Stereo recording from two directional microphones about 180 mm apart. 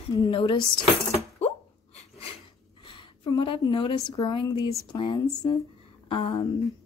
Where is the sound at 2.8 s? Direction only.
30° left (ahead or behind).